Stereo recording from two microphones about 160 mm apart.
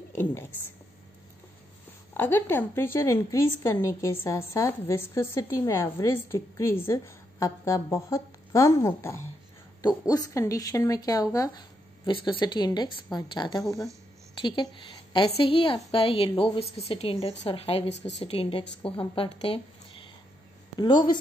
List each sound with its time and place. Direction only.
0.1 s a woman's voice: 15° left (ahead or behind)
2.1 s a woman's voice: 15° left (ahead or behind); by 17.9 s 40° left (ahead or behind)
17.9 s a woman's voice: 90° left
18.2 s a woman's voice: 35° left (ahead or behind)